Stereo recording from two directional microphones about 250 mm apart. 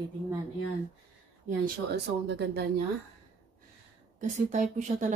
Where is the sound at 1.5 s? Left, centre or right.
Right.